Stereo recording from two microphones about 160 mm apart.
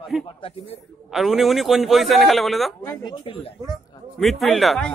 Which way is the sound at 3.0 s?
30° left (ahead or behind).